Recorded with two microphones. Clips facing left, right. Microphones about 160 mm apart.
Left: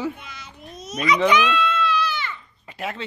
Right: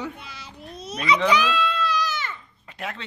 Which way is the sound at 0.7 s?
30° right (ahead or behind).